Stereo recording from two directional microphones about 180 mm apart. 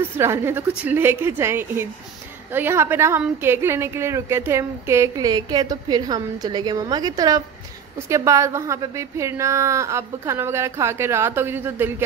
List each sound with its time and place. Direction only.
0.2 s a woman's voice: 15° right (ahead or behind)